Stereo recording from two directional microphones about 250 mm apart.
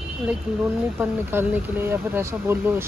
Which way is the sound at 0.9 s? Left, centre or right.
Centre.